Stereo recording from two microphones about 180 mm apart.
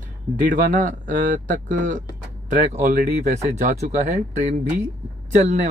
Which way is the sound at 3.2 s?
40° right (ahead or behind).